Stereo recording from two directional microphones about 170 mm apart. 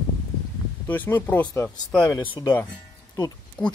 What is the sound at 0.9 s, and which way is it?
Speech, 10° left (ahead or behind).